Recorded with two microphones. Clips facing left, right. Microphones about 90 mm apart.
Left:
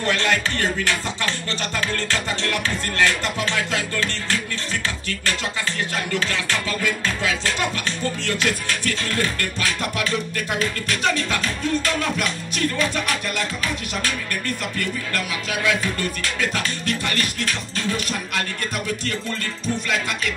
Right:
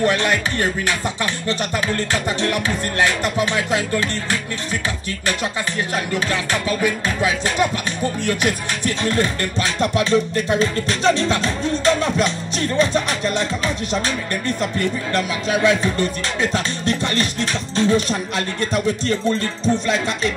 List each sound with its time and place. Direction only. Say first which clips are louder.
0.0 s music: right 3 dB; 15° right (ahead or behind)
6.1 s music: right 2 dB; 15° right (ahead or behind)
19.6 s music: right 4 dB; 25° right (ahead or behind)